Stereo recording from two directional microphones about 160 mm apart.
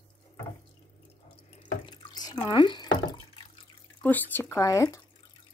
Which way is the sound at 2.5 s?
30° left (ahead or behind).